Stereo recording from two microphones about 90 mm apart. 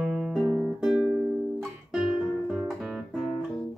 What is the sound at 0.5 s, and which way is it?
Guitar, 15° right (ahead or behind).